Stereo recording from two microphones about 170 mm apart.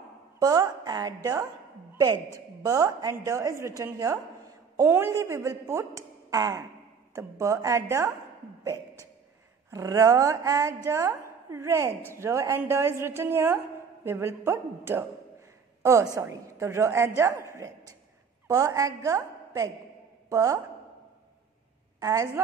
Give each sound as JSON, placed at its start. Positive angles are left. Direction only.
{"t": 0.4, "sound": "a woman's voice", "side_deg": -20}
{"t": 2.6, "sound": "a woman's voice", "side_deg": -20}
{"t": 9.7, "sound": "a woman's voice", "side_deg": -20}
{"t": 22.0, "sound": "a woman's voice", "side_deg": -20}